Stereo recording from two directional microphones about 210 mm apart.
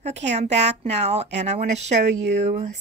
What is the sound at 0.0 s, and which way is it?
A woman's voice, 30° right (ahead or behind).